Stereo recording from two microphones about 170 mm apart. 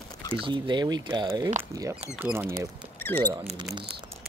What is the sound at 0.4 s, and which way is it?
Speech, 25° right (ahead or behind).